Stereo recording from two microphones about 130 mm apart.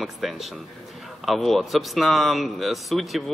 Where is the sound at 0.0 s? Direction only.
Centre (ahead or behind).